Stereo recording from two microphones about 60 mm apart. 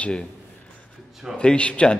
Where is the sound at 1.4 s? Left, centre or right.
Centre.